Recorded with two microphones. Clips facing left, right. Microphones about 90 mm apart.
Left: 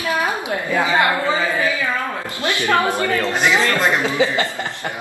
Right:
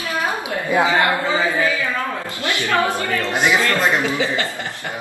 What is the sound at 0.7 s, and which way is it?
Speech, 15° right (ahead or behind).